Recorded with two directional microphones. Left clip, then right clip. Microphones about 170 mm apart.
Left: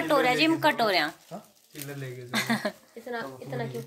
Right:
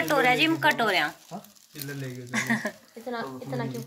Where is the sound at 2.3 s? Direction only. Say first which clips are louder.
Even; 30° left (ahead or behind).